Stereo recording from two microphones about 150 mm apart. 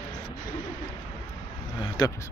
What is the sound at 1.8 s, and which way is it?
Speech, 30° left (ahead or behind).